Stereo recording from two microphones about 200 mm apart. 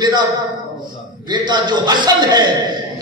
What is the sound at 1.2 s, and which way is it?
A man's voice, 20° right (ahead or behind).